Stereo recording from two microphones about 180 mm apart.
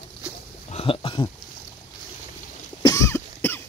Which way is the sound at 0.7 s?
30° left (ahead or behind).